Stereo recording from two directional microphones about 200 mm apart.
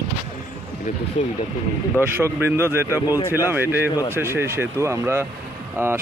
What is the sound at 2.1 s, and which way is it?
Speech, 10° right (ahead or behind).